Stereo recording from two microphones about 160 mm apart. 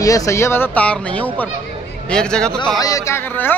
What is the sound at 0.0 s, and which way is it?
Speech, 20° left (ahead or behind).